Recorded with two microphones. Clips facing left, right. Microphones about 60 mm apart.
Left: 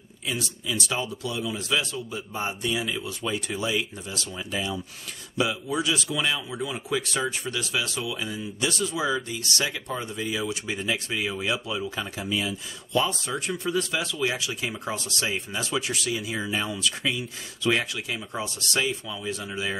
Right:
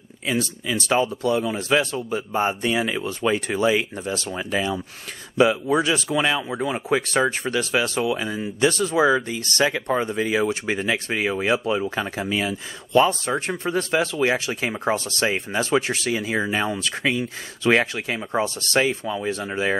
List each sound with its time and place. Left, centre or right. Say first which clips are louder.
0.4 s speech: right 5 dB; right
4.3 s speech: right 5 dB; right